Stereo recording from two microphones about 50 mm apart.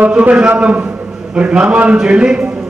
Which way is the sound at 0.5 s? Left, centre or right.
Right.